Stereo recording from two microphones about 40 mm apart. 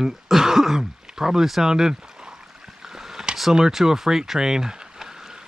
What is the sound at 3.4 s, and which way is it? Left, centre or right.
Speech, centre.